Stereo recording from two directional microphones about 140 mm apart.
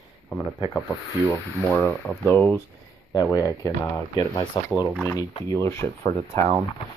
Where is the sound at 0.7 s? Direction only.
15° left (ahead or behind).